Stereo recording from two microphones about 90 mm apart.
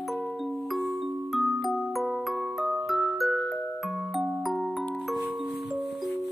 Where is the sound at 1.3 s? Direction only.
Centre (ahead or behind).